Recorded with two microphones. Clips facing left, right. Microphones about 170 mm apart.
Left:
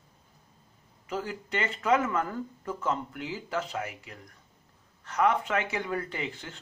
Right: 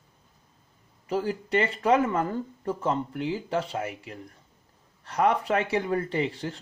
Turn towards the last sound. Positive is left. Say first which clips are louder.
# right 8 dB
turn(degrees=-35)  # may be behind; listen again after turning